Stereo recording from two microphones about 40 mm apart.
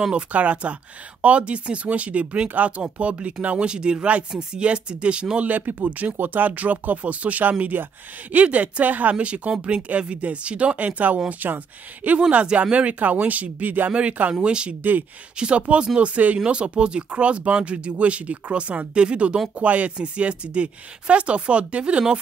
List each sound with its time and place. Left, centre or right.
0.3 s speech: right
3.6 s speech: right
5.5 s speech: right
6.1 s speech: right
8.4 s speech: right
9.2 s speech: right
11.2 s speech: right
12.7 s speech: right
13.9 s speech: right
14.8 s speech: right
15.3 s speech: right